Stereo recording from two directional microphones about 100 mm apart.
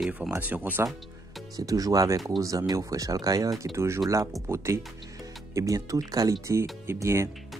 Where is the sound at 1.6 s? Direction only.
35° right (ahead or behind).